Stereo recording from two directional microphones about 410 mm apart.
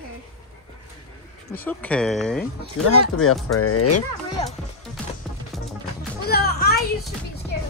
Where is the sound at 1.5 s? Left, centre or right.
Centre.